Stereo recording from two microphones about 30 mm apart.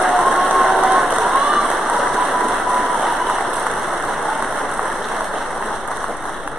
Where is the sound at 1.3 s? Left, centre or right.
Right.